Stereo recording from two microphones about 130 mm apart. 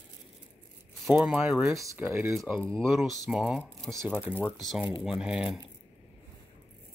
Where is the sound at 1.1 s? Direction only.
5° right (ahead or behind).